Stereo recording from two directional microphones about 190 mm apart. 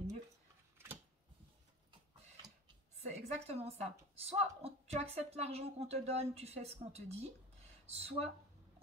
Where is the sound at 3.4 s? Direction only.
35° right (ahead or behind).